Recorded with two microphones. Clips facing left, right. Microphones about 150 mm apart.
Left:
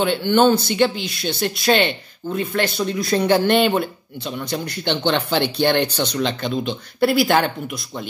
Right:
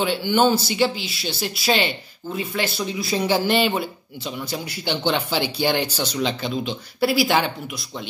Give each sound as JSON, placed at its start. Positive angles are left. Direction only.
{"t": 0.0, "sound": "speech", "side_deg": -5}
{"t": 1.9, "sound": "speech", "side_deg": 50}
{"t": 2.5, "sound": "speech", "side_deg": -5}